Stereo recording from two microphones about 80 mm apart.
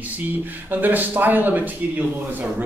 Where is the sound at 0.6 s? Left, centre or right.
Right.